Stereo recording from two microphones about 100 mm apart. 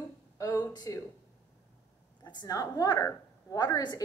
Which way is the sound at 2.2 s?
40° left (ahead or behind).